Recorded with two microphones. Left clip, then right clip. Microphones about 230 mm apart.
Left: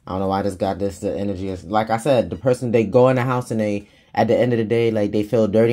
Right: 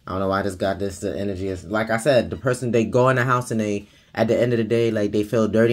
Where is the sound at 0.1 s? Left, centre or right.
Left.